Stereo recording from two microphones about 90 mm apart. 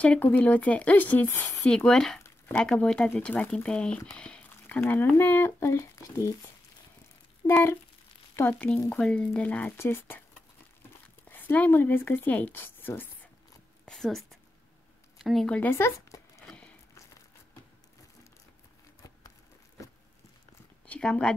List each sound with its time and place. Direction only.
0.0 s speech: 15° left (ahead or behind)
1.9 s speech: 5° left (ahead or behind); by 6.3 s 40° left (ahead or behind)
7.4 s speech: 25° left (ahead or behind)
11.2 s speech: 20° left (ahead or behind)
13.8 s a sound: 5° left (ahead or behind)
15.1 s speech: centre (ahead or behind)
15.5 s speech: 20° left (ahead or behind)
20.8 s speech: 10° left (ahead or behind)